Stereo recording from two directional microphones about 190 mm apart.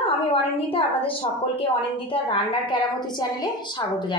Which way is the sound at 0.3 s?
30° left (ahead or behind).